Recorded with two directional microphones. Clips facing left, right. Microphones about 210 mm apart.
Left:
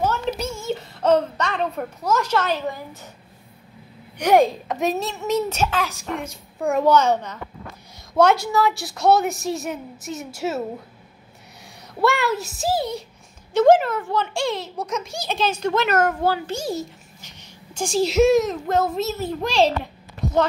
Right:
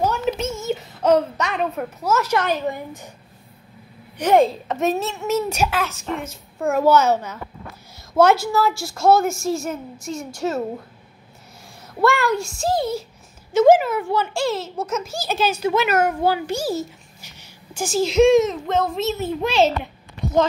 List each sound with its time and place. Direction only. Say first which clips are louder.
0.0 s a sound: right 2 dB; 10° right (ahead or behind)
0.7 s a child's voice: right 1 dB; 10° right (ahead or behind)
4.2 s a child's voice: even; centre (ahead or behind)
11.9 s a child's voice: right 2 dB; centre (ahead or behind)